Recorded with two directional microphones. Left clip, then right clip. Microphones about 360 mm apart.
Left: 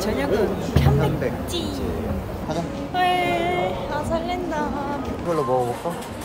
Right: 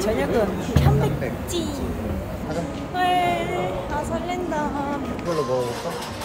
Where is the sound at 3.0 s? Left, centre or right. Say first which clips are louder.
Even; centre.